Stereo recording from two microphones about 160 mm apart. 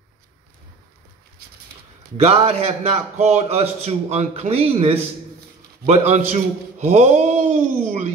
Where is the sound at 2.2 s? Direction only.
45° right (ahead or behind).